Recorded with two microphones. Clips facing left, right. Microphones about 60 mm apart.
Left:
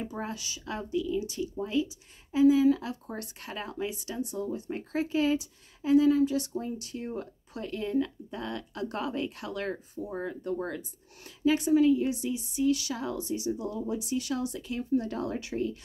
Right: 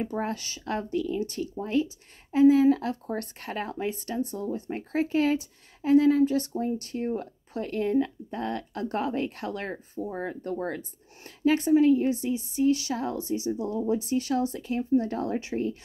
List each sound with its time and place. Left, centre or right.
0.0 s a woman's voice: right